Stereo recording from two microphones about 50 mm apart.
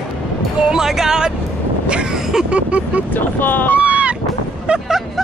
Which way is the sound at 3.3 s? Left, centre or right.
Left.